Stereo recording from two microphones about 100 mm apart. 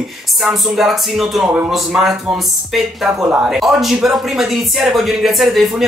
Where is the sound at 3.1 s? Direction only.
25° right (ahead or behind).